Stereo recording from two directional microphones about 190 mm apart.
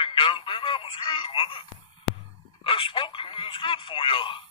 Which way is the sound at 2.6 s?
25° left (ahead or behind).